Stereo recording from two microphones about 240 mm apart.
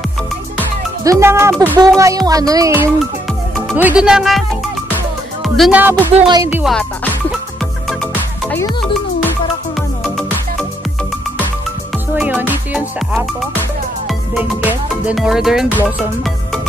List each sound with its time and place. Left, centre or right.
1.0 s speech: centre
1.5 s speech: centre
1.8 s speech: centre
6.1 s speech: centre
6.6 s speech: centre
10.0 s music: centre
12.2 s music: centre